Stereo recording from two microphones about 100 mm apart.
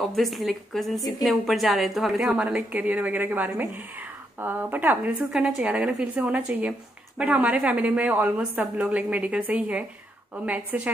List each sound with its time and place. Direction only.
0.1 s a woman's voice: centre (ahead or behind); by 5.1 s 20° right (ahead or behind)
5.3 s a woman's voice: 10° right (ahead or behind)